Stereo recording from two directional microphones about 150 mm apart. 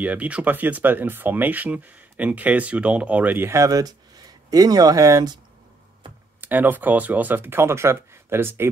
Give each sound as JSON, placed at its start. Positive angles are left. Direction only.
{"t": 0.0, "sound": "speech", "side_deg": -10}
{"t": 6.4, "sound": "speech", "side_deg": -15}